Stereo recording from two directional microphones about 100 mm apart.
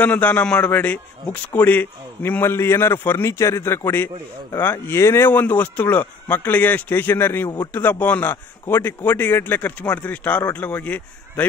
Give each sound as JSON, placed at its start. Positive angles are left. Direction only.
{"t": 0.0, "sound": "a man's voice", "side_deg": 15}
{"t": 7.4, "sound": "a man's voice", "side_deg": 45}
{"t": 7.7, "sound": "a man's voice", "side_deg": 20}